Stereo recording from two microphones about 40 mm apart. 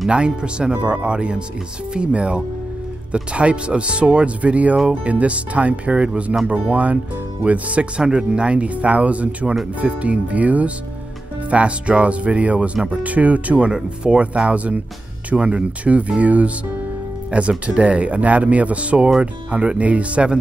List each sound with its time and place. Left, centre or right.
0.1 s speech: right
13.7 s speech: right